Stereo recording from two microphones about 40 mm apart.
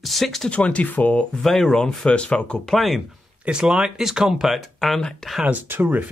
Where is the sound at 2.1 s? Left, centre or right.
Left.